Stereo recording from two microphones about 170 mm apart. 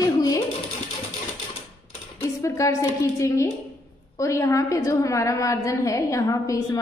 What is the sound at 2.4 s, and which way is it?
A woman's voice, 20° left (ahead or behind).